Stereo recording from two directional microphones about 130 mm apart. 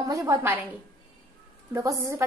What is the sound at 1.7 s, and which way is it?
Speech, 20° right (ahead or behind).